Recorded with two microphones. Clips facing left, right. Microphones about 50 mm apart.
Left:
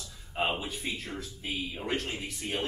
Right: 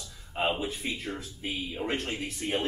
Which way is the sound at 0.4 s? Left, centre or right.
Centre.